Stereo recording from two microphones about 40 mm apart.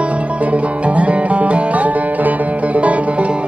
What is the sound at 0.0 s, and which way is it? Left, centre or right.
Music, right.